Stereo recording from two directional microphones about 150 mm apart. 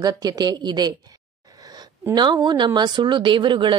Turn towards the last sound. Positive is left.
turn(degrees=-35)  # may be behind; listen again after turning